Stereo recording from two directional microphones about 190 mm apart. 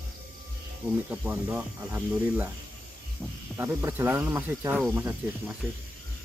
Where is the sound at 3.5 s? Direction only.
10° right (ahead or behind).